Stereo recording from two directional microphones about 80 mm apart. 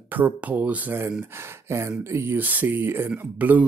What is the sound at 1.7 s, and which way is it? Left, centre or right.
Speech, right.